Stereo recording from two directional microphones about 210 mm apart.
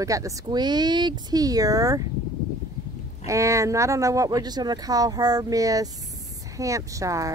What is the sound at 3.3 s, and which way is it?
Speech, 15° right (ahead or behind).